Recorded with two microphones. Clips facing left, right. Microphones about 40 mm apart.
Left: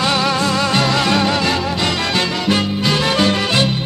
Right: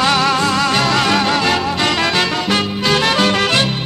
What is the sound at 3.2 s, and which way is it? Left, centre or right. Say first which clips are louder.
Music: right 2 dB; right.